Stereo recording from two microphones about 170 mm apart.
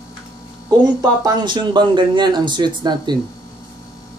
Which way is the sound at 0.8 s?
25° right (ahead or behind).